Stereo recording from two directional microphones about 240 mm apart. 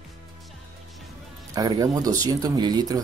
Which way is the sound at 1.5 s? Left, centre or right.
Centre.